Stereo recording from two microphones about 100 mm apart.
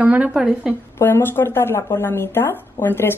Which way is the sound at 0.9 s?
25° left (ahead or behind).